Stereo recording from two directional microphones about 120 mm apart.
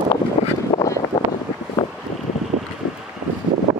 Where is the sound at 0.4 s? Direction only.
60° left (ahead or behind).